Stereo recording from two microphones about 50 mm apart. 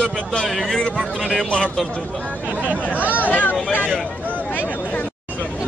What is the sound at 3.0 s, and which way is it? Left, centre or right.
Speech, left.